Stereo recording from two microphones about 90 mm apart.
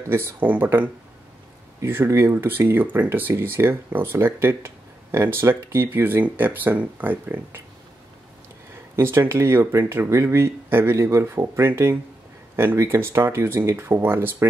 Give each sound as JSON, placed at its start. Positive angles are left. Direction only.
{"t": 0.1, "sound": "speech", "side_deg": -25}
{"t": 8.9, "sound": "speech", "side_deg": -25}